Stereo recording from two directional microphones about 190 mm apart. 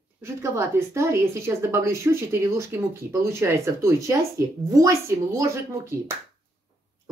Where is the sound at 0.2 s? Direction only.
15° right (ahead or behind).